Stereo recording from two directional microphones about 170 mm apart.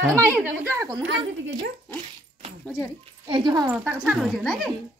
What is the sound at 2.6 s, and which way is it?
Speech, 10° left (ahead or behind).